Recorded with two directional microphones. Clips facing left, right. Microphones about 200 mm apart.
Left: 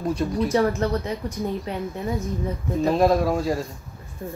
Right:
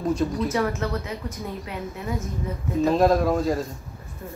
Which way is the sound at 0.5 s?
35° left (ahead or behind).